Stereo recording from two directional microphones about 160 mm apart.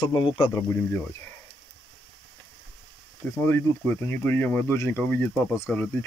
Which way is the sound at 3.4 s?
15° left (ahead or behind).